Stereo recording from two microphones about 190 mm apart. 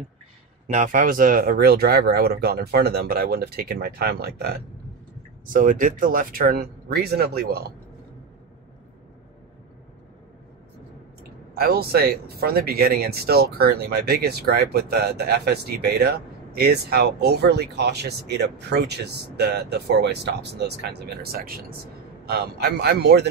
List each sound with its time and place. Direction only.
0.7 s speech: 45° right (ahead or behind)
5.5 s speech: 45° right (ahead or behind)
11.6 s speech: 55° right (ahead or behind)